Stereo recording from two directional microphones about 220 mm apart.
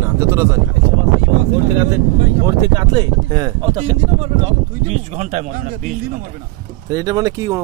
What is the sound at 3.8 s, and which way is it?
Speech, 30° right (ahead or behind).